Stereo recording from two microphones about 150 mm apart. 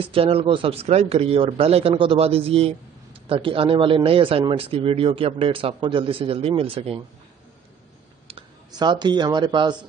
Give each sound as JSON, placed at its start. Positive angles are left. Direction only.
{"t": 0.0, "sound": "a man's voice", "side_deg": -40}
{"t": 8.7, "sound": "speech", "side_deg": -30}